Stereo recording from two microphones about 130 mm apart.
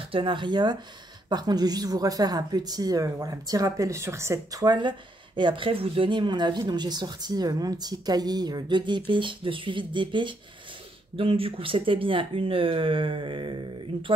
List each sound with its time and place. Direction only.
0.1 s speech: 40° right (ahead or behind)